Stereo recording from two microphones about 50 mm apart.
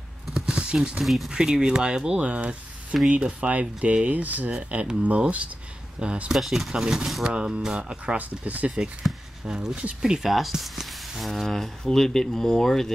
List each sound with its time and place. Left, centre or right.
0.3 s a sound: centre
0.7 s speech: centre
1.0 s speech: centre
1.3 s speech: centre
6.3 s speech: centre
6.7 s speech: centre
8.2 s speech: right
9.5 s speech: centre
11.4 s speech: centre